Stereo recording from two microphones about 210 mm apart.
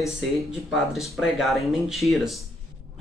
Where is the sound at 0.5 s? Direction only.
Centre (ahead or behind).